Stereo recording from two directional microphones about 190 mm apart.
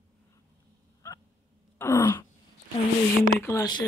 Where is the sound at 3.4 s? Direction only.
15° left (ahead or behind).